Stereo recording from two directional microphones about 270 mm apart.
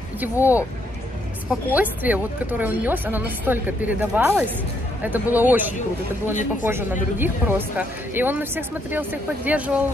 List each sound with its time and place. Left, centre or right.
0.2 s speech: centre